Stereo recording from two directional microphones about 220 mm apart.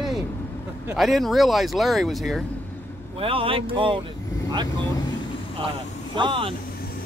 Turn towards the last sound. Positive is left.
turn(degrees=-20)  # may be behind; listen again after turning